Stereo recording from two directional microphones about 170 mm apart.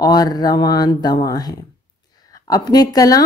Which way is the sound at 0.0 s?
25° left (ahead or behind).